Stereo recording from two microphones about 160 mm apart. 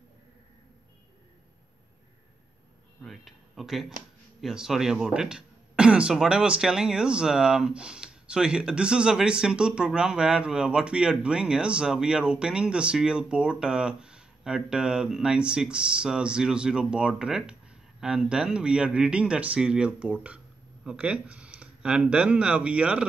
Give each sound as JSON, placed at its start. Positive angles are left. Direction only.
{"t": 3.0, "sound": "speech", "side_deg": 0}